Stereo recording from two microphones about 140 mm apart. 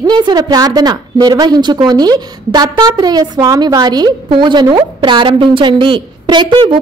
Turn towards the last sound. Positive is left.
turn(degrees=-35)  # may be behind; listen again after turning